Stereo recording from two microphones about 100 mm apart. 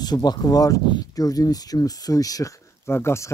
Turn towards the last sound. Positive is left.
turn(degrees=25)  # may be behind; listen again after turning